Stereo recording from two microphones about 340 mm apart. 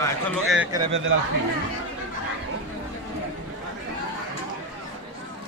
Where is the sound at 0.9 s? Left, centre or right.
Right.